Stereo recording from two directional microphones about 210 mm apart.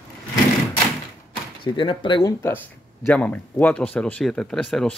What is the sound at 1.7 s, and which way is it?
Speech, 25° left (ahead or behind).